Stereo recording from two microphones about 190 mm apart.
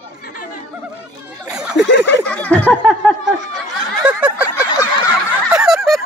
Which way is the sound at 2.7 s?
Centre (ahead or behind).